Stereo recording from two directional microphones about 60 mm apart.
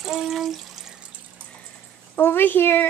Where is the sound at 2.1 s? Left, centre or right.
Left.